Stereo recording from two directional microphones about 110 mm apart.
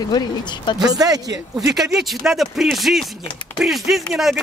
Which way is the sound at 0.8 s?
35° right (ahead or behind).